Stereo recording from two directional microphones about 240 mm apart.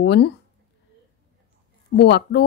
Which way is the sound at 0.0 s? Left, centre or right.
Left.